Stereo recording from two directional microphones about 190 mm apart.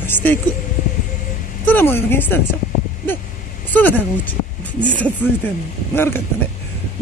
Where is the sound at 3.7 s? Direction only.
10° left (ahead or behind).